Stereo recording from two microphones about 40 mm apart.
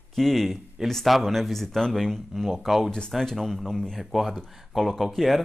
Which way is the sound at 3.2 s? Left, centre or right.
Centre.